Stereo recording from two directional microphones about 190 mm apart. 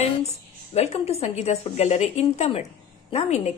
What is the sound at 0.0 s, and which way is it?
A woman's voice, 35° left (ahead or behind).